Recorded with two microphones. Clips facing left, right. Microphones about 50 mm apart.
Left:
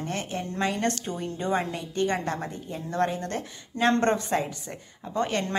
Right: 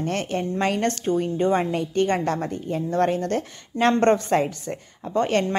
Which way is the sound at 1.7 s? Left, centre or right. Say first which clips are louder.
Right 5 dB; right.